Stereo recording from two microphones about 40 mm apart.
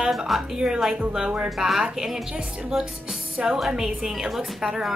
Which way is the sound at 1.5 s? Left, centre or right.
Centre.